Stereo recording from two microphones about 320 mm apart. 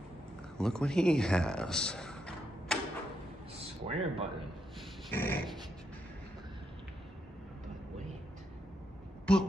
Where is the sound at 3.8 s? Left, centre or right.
Centre.